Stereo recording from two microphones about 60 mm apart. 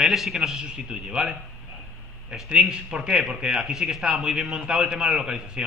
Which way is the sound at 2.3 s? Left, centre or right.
Centre.